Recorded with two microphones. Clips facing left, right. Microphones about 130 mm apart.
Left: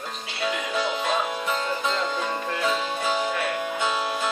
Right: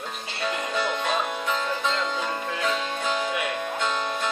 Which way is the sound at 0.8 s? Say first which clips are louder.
Left 1 dB; centre (ahead or behind).